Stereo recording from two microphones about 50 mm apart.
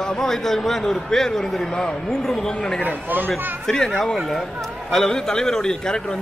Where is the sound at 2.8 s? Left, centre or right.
Right.